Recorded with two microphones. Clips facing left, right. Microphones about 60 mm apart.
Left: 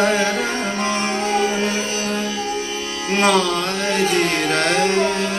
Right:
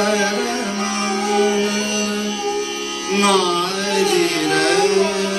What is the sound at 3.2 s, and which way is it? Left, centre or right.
Music, left.